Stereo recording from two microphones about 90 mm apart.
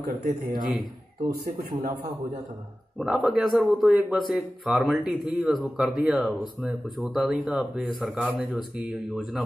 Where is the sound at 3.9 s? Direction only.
15° right (ahead or behind).